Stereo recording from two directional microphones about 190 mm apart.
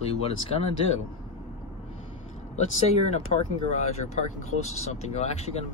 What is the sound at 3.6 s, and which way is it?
Speech, 35° left (ahead or behind).